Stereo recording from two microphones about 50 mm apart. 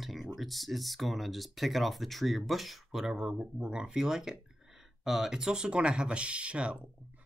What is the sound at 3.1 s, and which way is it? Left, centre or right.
Speech, right.